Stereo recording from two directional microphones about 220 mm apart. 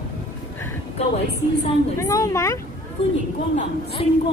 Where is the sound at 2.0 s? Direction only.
15° left (ahead or behind).